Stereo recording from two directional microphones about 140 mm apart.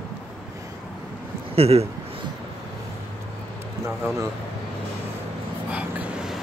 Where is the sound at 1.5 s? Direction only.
45° right (ahead or behind).